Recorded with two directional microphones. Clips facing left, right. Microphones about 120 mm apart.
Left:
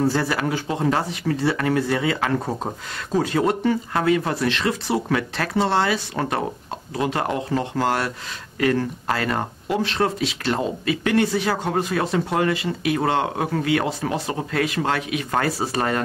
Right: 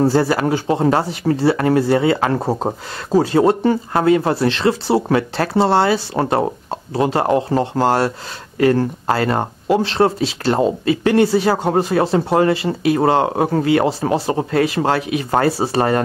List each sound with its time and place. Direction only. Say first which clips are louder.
0.0 s speech: right 6 dB; 35° right (ahead or behind)